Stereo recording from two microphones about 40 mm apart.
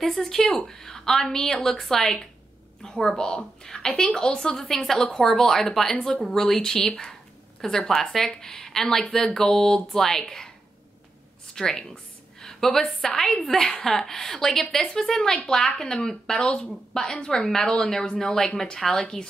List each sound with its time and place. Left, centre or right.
0.0 s a woman's voice: centre
11.5 s a sound: centre
12.8 s a woman's voice: centre
16.3 s a woman's voice: left; by 19.0 s centre